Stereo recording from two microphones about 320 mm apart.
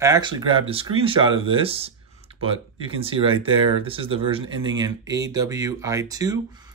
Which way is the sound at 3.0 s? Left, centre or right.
Centre.